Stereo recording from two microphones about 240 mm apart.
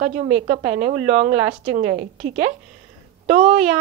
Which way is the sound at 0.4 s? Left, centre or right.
Right.